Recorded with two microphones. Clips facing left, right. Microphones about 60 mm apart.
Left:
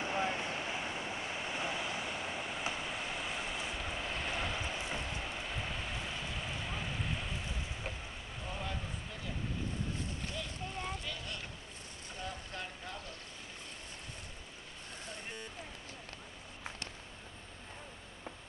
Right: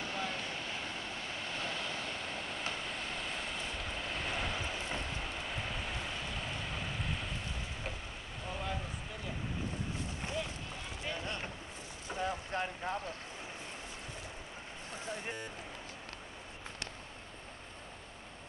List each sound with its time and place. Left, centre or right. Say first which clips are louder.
0.0 s waves: left 3 dB; left; by 7.3 s centre
8.5 s a sound: right 2 dB; centre
11.1 s boat: right 4 dB; right